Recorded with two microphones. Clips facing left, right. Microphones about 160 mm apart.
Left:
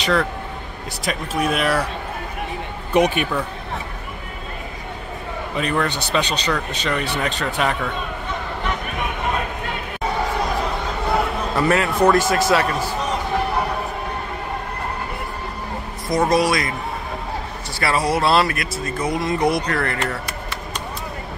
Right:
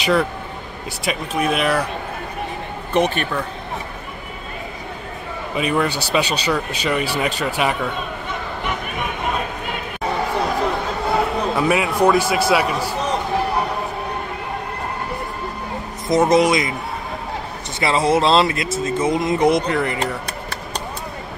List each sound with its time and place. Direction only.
0.0 s speech: 5° right (ahead or behind)
2.9 s speech: 10° left (ahead or behind)
5.6 s speech: 5° right (ahead or behind)
11.5 s speech: 10° right (ahead or behind)
16.1 s speech: 20° right (ahead or behind)
17.7 s speech: 20° right (ahead or behind)